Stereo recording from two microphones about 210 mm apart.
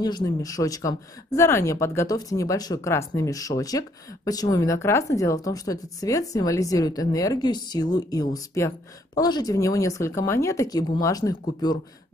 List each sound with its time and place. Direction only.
0.0 s speech: 20° left (ahead or behind)